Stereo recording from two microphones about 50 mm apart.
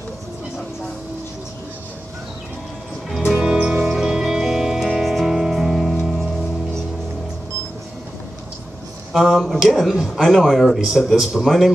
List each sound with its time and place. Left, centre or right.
3.1 s music: centre
3.3 s music: right
3.9 s music: centre
9.1 s speech: centre